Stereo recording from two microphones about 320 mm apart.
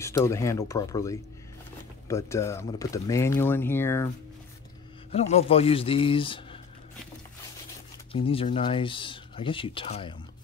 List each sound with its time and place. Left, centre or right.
0.0 s speech: centre
5.1 s speech: centre
8.1 s speech: centre